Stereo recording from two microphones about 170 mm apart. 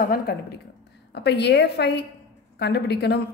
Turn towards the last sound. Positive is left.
turn(degrees=75)  # may be behind; listen again after turning